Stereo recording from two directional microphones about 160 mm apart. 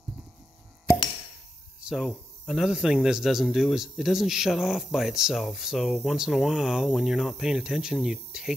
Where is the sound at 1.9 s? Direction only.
5° right (ahead or behind).